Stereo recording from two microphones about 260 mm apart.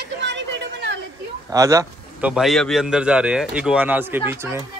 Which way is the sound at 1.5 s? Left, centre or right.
Centre.